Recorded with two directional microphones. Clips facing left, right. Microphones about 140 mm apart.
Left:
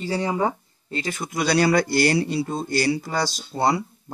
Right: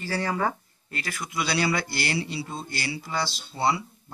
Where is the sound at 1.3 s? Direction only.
45° left (ahead or behind).